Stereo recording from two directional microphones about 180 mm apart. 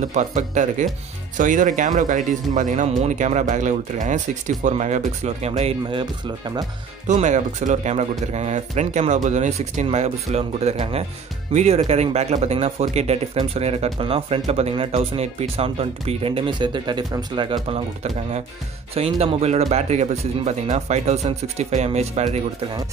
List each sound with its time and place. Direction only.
0.1 s speech: 40° right (ahead or behind); by 6.7 s 25° right (ahead or behind)
7.1 s speech: 40° right (ahead or behind)
18.9 s speech: 35° right (ahead or behind)